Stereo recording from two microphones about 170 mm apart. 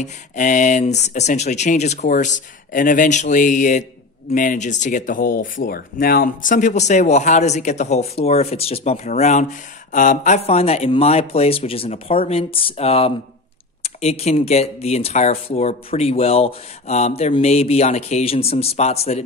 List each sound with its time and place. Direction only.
0.0 s speech: 50° left (ahead or behind)